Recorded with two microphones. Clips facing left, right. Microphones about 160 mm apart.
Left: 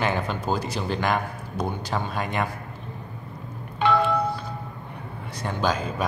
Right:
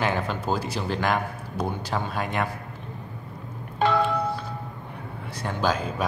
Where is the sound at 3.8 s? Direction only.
45° right (ahead or behind).